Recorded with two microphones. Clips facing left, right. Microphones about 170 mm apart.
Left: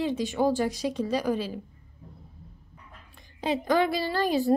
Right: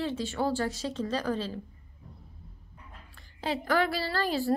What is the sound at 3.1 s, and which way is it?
A woman's voice, 20° left (ahead or behind).